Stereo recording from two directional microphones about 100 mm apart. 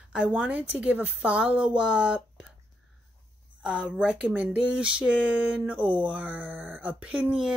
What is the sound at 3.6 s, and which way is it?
Speech, 10° right (ahead or behind).